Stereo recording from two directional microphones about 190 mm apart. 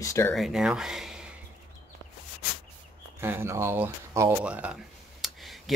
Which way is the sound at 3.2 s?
10° right (ahead or behind).